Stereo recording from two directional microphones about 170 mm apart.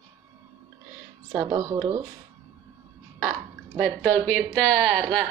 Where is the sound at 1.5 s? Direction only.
20° right (ahead or behind).